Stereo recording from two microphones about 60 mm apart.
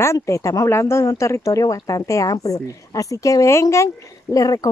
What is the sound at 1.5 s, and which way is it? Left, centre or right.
Speech, left.